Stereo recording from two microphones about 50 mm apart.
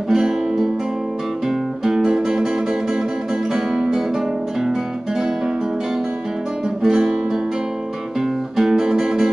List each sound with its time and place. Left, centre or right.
0.1 s guitar: centre
1.9 s music: centre
3.7 s music: right
6.8 s guitar: centre
8.5 s music: centre